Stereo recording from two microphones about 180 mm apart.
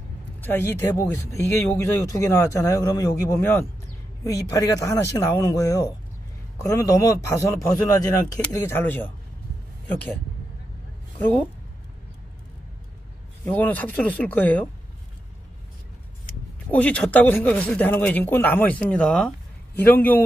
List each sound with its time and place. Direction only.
0.4 s speech: 10° left (ahead or behind)
11.1 s a woman's voice: 10° left (ahead or behind)
13.5 s speech: 10° left (ahead or behind)
16.7 s speech: 5° left (ahead or behind)